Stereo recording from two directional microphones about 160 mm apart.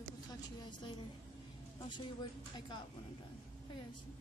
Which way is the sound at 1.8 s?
30° left (ahead or behind).